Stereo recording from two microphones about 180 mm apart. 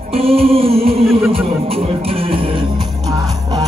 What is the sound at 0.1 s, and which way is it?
Music, 35° right (ahead or behind).